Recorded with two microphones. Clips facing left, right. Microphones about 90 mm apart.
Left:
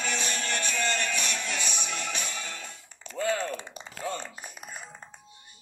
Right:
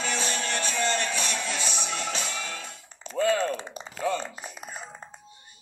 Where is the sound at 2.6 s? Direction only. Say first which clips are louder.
Right 3 dB; 25° right (ahead or behind).